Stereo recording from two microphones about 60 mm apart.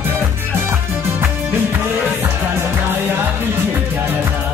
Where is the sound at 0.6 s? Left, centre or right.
Right.